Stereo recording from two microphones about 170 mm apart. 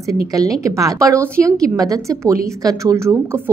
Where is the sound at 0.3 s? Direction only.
20° right (ahead or behind).